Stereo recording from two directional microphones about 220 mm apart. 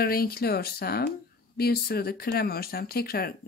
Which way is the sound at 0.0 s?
45° left (ahead or behind).